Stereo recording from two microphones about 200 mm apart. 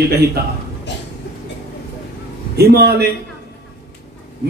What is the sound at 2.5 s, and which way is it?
Speech, 50° right (ahead or behind).